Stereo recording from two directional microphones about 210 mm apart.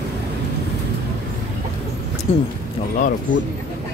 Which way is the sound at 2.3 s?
30° left (ahead or behind).